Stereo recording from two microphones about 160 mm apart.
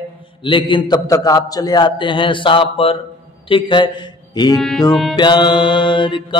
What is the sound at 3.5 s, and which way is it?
A man's voice, 30° left (ahead or behind).